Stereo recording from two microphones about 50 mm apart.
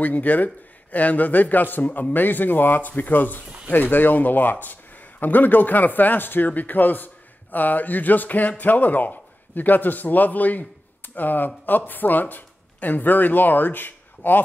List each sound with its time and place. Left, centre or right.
0.0 s speech: left
3.4 s a sound: centre
3.7 s speech: left